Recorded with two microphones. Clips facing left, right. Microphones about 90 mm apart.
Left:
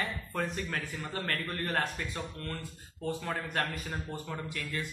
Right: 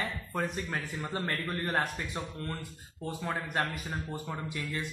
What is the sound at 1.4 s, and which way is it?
Mantra, 10° right (ahead or behind).